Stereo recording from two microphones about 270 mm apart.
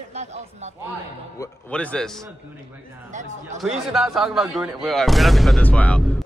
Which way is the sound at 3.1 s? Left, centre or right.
Right.